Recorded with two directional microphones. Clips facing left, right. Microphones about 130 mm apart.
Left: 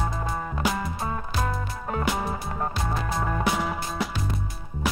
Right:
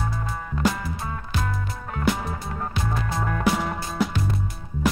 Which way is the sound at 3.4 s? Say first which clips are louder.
Right 2 dB; centre (ahead or behind).